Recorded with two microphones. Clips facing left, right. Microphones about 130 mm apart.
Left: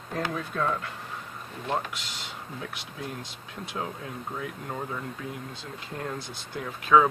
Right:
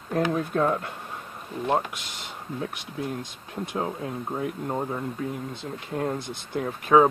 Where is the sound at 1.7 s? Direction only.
50° right (ahead or behind).